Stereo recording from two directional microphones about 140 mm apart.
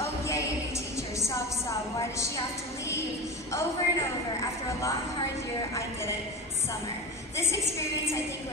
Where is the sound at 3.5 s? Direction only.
20° left (ahead or behind).